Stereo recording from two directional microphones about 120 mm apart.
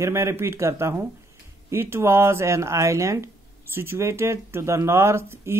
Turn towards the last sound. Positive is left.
turn(degrees=-20)  # may be behind; listen again after turning